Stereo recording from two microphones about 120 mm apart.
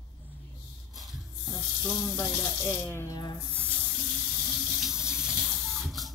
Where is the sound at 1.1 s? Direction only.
Centre (ahead or behind).